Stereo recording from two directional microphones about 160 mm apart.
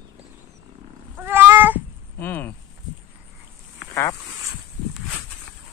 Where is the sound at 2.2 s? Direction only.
10° left (ahead or behind).